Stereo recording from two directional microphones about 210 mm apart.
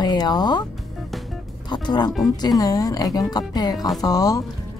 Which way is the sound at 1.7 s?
20° left (ahead or behind).